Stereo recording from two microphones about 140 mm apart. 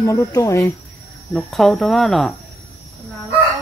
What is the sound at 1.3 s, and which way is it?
Speech, centre (ahead or behind).